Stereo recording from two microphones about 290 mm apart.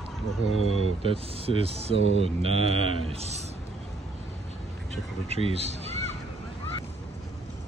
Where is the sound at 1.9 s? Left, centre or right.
Left.